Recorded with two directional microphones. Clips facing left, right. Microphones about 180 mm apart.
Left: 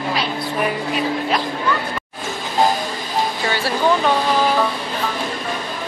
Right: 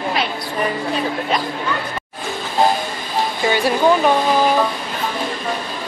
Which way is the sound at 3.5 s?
15° right (ahead or behind).